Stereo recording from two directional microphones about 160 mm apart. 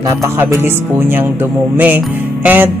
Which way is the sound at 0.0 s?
20° right (ahead or behind).